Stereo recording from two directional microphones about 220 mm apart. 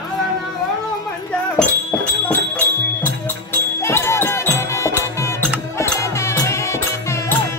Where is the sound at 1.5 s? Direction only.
10° left (ahead or behind).